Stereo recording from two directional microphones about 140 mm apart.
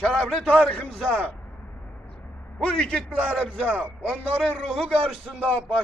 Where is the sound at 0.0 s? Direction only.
5° left (ahead or behind).